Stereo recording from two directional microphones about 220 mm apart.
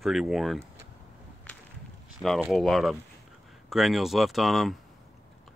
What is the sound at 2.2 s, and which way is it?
Speech, 5° right (ahead or behind).